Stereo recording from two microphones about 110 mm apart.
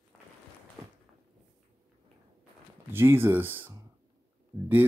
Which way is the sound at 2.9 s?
20° right (ahead or behind).